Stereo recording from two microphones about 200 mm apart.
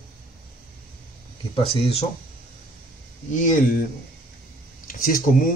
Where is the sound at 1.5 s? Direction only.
30° left (ahead or behind).